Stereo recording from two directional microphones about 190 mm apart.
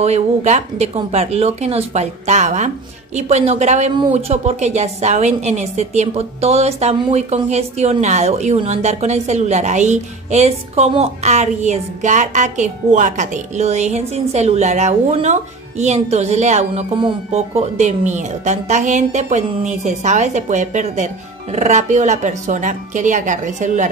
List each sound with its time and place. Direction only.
0.0 s a woman's voice: 35° right (ahead or behind)